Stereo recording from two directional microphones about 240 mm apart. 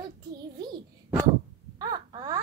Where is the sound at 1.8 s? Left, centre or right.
Centre.